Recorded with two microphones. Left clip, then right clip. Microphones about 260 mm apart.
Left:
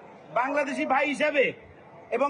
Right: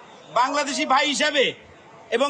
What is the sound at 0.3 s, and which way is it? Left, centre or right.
A man's voice, centre.